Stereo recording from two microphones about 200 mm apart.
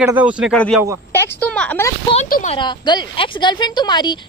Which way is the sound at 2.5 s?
25° left (ahead or behind).